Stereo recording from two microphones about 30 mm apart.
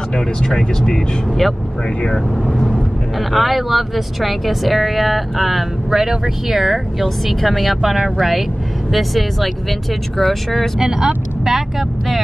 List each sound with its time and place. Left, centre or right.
0.6 s speech: left
2.3 s speech: centre
5.9 s speech: centre
10.8 s speech: right